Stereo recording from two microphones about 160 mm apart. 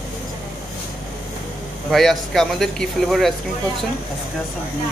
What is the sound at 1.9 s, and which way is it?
Speech, centre (ahead or behind).